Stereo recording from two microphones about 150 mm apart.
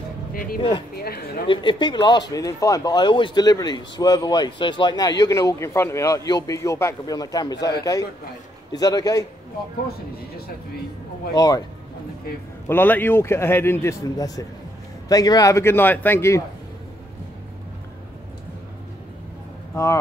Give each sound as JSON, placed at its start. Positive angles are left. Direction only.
{"t": 0.3, "sound": "speech", "side_deg": 75}
{"t": 0.6, "sound": "speech", "side_deg": 30}
{"t": 0.9, "sound": "speech", "side_deg": 90}
{"t": 1.5, "sound": "speech", "side_deg": 35}
{"t": 8.7, "sound": "speech", "side_deg": 25}
{"t": 11.3, "sound": "speech", "side_deg": 25}
{"t": 12.6, "sound": "speech", "side_deg": 15}
{"t": 19.7, "sound": "speech", "side_deg": 20}